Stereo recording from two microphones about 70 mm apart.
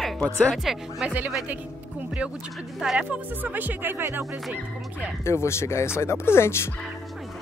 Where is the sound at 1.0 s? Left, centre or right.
Right.